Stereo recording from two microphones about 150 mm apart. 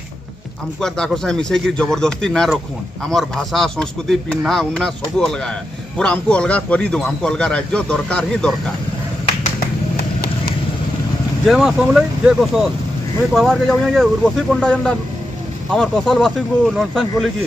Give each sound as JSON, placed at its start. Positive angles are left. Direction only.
{"t": 0.7, "sound": "a man's voice", "side_deg": 5}
{"t": 9.9, "sound": "clip-clop", "side_deg": 90}
{"t": 11.4, "sound": "speech", "side_deg": -5}